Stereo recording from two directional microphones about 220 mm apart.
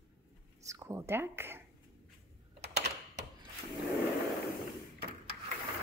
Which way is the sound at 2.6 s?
50° right (ahead or behind).